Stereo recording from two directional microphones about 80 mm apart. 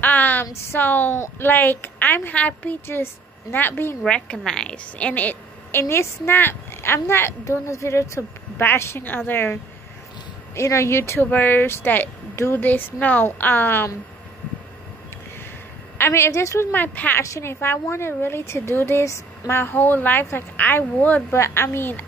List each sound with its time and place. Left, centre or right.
0.0 s a sound: left
0.5 s a woman's voice: left
4.0 s a woman's voice: centre; by 11.2 s left
11.2 s a woman's voice: left
16.0 s a woman's voice: left
16.7 s a woman's voice: left
17.2 s a woman's voice: left